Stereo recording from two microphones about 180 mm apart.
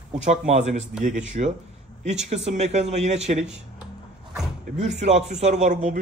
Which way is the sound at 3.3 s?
5° right (ahead or behind).